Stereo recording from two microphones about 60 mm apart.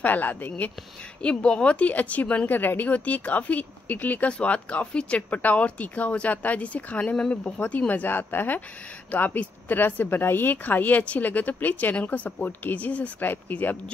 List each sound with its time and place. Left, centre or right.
0.0 s speech: left
1.2 s speech: centre